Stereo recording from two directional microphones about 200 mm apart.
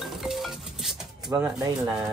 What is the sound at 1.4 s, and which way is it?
Speech, 5° right (ahead or behind).